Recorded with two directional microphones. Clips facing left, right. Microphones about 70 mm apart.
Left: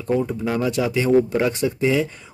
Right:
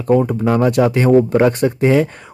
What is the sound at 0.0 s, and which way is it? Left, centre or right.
Speech, right.